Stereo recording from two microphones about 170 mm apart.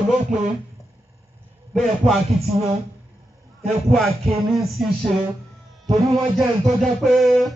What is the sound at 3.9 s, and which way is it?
Speech, centre (ahead or behind).